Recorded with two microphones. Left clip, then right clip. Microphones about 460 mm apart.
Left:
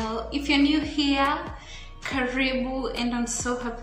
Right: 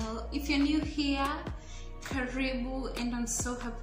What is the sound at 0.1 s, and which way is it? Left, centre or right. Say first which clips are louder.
A woman's voice: left 7 dB; left.